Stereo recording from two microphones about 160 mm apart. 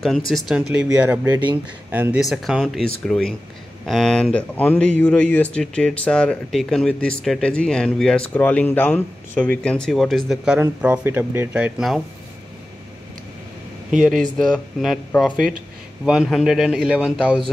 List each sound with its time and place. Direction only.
0.5 s speech: 10° right (ahead or behind)
1.2 s speech: 25° right (ahead or behind)
1.9 s a man's voice: 10° right (ahead or behind)
10.6 s speech: 15° right (ahead or behind)
14.0 s a man's voice: 5° left (ahead or behind)